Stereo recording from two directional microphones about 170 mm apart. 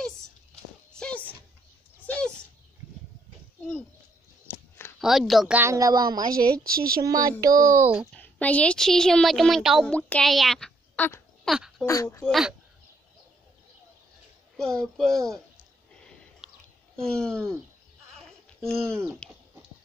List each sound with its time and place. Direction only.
0.9 s music: 5° left (ahead or behind)
2.0 s a sound: 10° left (ahead or behind)
4.5 s a sound: 15° left (ahead or behind)
5.0 s speech: centre (ahead or behind)
5.6 s a child's voice: 20° right (ahead or behind)
6.3 s a woman's voice: 60° right (ahead or behind)
7.0 s a child's voice: 20° right (ahead or behind)
8.1 s a woman's voice: 10° left (ahead or behind)
11.8 s speech: 15° left (ahead or behind)
12.3 s speech: centre (ahead or behind)
14.6 s speech: 5° left (ahead or behind)
16.4 s a sound: centre (ahead or behind)
16.9 s speech: 5° left (ahead or behind)
18.6 s speech: 5° left (ahead or behind)